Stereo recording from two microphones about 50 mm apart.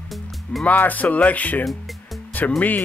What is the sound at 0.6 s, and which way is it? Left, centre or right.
Speech, left.